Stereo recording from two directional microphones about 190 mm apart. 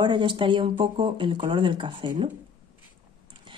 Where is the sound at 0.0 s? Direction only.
25° right (ahead or behind).